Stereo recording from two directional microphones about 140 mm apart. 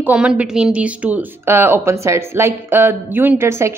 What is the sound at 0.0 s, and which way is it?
A woman's voice, 10° right (ahead or behind).